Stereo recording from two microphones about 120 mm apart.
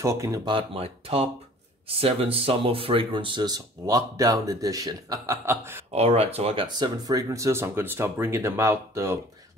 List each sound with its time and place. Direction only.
0.0 s speech: 25° right (ahead or behind)
0.5 s speech: 50° right (ahead or behind); by 5.9 s 20° right (ahead or behind)
5.9 s speech: 55° right (ahead or behind)
6.7 s speech: 35° right (ahead or behind)